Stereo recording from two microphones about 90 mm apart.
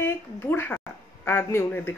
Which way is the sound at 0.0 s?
20° left (ahead or behind).